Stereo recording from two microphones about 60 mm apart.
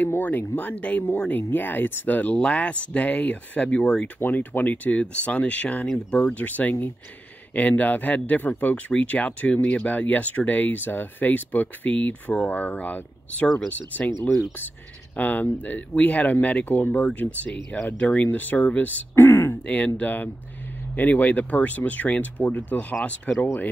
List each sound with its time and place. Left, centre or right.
0.0 s speech: left; by 4.1 s centre
4.2 s speech: left
15.1 s speech: left
19.1 s a sound: left
19.6 s speech: left